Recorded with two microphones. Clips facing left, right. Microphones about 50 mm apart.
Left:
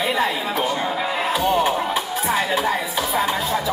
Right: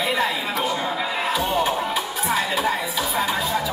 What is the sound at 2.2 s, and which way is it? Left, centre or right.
Music, left.